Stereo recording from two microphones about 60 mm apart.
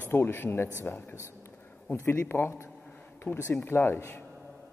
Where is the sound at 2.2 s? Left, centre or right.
Left.